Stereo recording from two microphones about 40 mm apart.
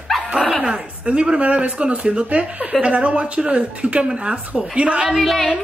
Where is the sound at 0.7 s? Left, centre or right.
Right.